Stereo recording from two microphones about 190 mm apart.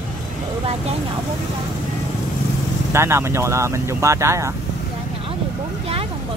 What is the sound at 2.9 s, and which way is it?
Speech, 15° right (ahead or behind).